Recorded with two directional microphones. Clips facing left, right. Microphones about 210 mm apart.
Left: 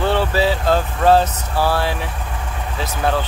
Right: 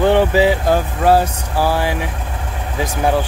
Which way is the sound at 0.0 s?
15° right (ahead or behind).